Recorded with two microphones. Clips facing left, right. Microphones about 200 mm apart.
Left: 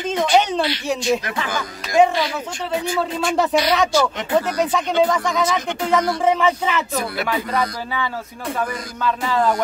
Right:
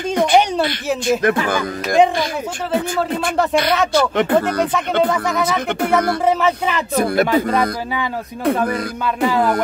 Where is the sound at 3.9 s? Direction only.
60° right (ahead or behind).